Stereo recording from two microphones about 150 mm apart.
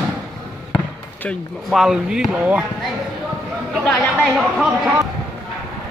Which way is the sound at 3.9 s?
15° left (ahead or behind).